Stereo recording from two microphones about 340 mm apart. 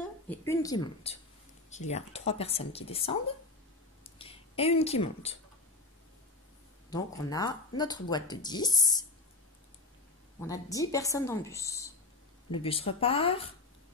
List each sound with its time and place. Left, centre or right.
0.3 s speech: centre
4.0 s a sound: centre
6.9 s speech: centre
10.4 s speech: centre